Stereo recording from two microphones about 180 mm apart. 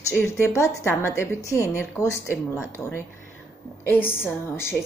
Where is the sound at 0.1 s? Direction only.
15° left (ahead or behind).